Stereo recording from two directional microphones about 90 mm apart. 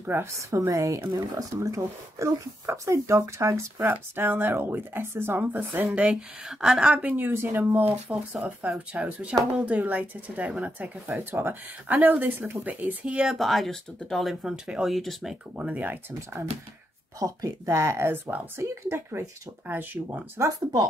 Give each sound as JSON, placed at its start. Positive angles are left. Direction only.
{"t": 0.0, "sound": "a woman's voice", "side_deg": -25}
{"t": 0.5, "sound": "speech", "side_deg": -35}
{"t": 6.6, "sound": "speech", "side_deg": -10}
{"t": 11.1, "sound": "speech", "side_deg": -25}
{"t": 15.5, "sound": "speech", "side_deg": -15}
{"t": 17.2, "sound": "speech", "side_deg": -40}